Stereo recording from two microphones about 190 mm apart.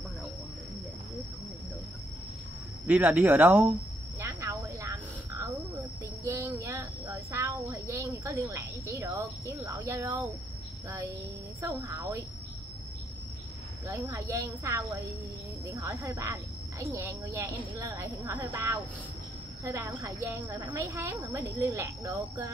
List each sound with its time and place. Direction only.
2.9 s a woman's voice: 10° right (ahead or behind)
4.2 s a sound: 15° right (ahead or behind)
11.6 s a woman's voice: 15° right (ahead or behind)
13.8 s a woman's voice: 15° right (ahead or behind)